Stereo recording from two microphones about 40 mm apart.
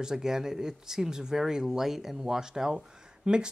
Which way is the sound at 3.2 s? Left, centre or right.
Right.